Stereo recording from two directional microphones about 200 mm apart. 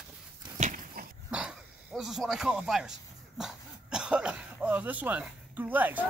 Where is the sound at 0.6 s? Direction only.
40° right (ahead or behind).